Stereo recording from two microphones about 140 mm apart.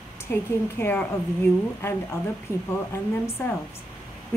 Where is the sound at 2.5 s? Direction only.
15° left (ahead or behind).